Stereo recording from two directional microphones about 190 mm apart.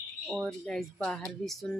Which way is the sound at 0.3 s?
Centre (ahead or behind).